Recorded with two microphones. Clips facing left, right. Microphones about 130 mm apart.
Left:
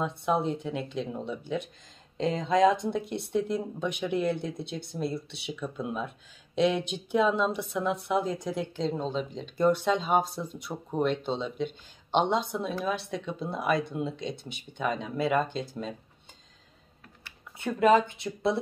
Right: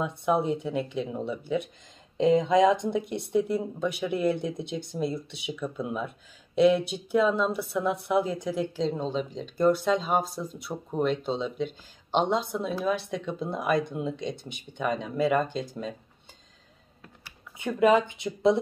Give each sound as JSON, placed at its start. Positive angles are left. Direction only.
{"t": 0.0, "sound": "speech", "side_deg": -10}
{"t": 17.2, "sound": "typing", "side_deg": -10}
{"t": 17.7, "sound": "speech", "side_deg": -5}
{"t": 18.2, "sound": "speech", "side_deg": -15}